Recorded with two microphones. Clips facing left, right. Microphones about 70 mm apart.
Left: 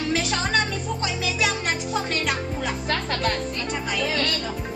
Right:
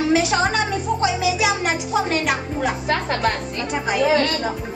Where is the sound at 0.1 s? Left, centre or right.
Centre.